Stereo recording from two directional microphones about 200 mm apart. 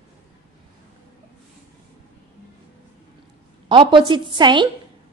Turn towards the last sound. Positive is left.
turn(degrees=-25)  # may be behind; listen again after turning